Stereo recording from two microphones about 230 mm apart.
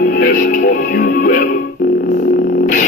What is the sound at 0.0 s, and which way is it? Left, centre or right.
Music, left.